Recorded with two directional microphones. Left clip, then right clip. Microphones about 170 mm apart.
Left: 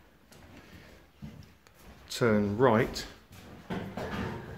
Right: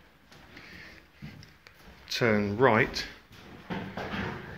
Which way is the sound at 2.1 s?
15° left (ahead or behind).